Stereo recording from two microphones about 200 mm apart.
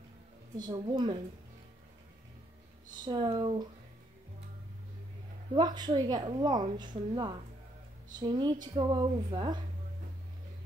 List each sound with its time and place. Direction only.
0.6 s a woman's voice: 20° right (ahead or behind)
2.9 s speech: 20° right (ahead or behind)
5.5 s a woman's voice: 20° right (ahead or behind)